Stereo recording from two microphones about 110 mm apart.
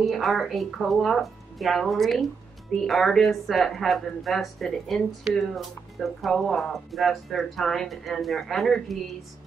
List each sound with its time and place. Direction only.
0.0 s speech: centre (ahead or behind)